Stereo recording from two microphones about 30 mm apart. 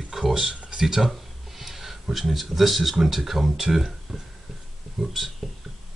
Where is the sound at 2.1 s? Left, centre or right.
Centre.